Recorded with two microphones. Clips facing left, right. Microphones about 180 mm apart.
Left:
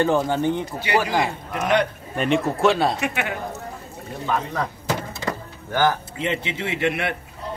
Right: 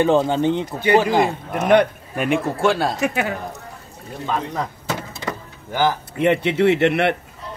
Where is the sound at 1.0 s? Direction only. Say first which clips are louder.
Right 5 dB; 50° right (ahead or behind).